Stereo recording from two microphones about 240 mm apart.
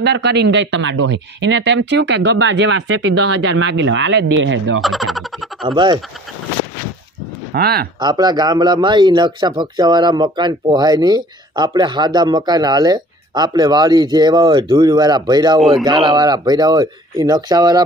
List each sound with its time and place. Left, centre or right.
0.0 s speech: right
4.8 s speech: centre
5.6 s speech: centre
7.5 s speech: right
8.0 s a man's voice: centre